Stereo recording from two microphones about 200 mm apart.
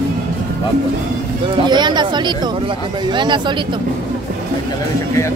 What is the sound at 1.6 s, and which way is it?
Speech, 20° right (ahead or behind).